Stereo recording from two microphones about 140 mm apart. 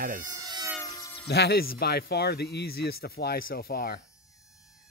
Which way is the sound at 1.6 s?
90° left.